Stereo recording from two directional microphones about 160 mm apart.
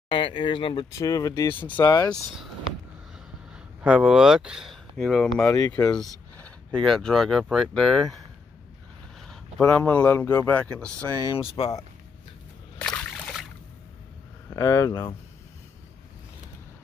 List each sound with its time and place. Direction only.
0.1 s speech: 30° left (ahead or behind)
0.9 s speech: 20° left (ahead or behind)
1.8 s speech: 25° left (ahead or behind)
3.8 s speech: 5° right (ahead or behind)
5.8 s speech: 25° left (ahead or behind)
6.4 s speech: 5° left (ahead or behind)
9.2 s speech: 5° left (ahead or behind)
11.3 s speech: 35° left (ahead or behind)
12.7 s splash: 5° left (ahead or behind)
14.5 s speech: 20° left (ahead or behind)